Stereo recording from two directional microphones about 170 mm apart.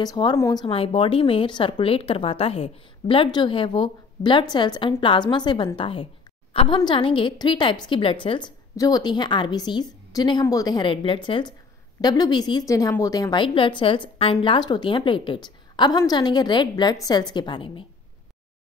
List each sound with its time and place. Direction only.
0.0 s a woman's voice: 25° left (ahead or behind)
0.7 s a woman's voice: 35° left (ahead or behind)